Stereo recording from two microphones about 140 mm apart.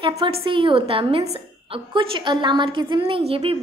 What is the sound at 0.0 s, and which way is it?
A woman's voice, 35° right (ahead or behind).